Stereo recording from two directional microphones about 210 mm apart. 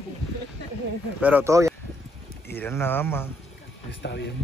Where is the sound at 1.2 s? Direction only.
10° right (ahead or behind).